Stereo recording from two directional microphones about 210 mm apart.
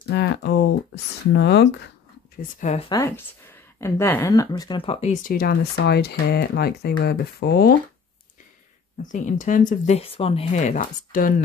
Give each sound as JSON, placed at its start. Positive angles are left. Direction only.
{"t": 0.1, "sound": "speech", "side_deg": 50}
{"t": 2.6, "sound": "speech", "side_deg": 30}
{"t": 2.9, "sound": "speech", "side_deg": 10}
{"t": 9.0, "sound": "speech", "side_deg": 35}